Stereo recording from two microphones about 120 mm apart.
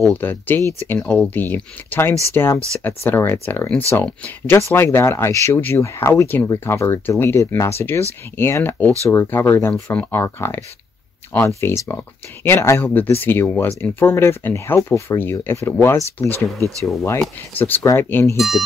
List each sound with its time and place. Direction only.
0.1 s speech: 15° left (ahead or behind)
0.9 s speech: 5° left (ahead or behind)
16.3 s speech: 25° right (ahead or behind)
17.6 s speech: 15° left (ahead or behind)
18.3 s speech: centre (ahead or behind)